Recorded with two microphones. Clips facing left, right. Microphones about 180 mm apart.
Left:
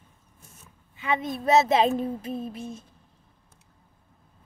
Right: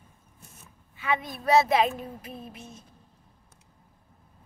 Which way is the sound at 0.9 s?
20° left (ahead or behind).